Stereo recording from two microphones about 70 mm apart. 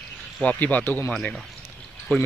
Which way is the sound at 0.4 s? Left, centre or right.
Centre.